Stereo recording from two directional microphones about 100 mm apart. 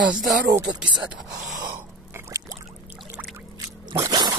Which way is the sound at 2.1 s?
30° right (ahead or behind).